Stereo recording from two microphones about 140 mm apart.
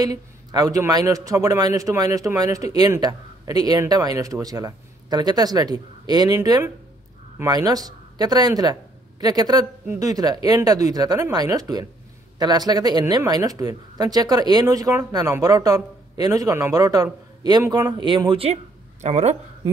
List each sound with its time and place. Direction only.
0.0 s speech: 25° right (ahead or behind); by 19.3 s 55° right (ahead or behind)